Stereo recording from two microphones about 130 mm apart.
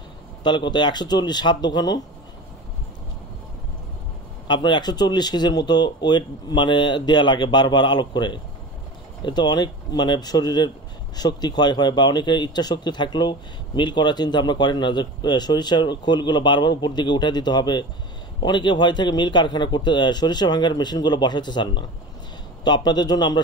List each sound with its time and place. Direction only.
0.4 s speech: 35° left (ahead or behind)
4.5 s speech: 35° left (ahead or behind)